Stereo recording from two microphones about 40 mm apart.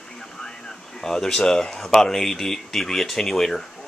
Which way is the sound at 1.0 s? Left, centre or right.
Centre.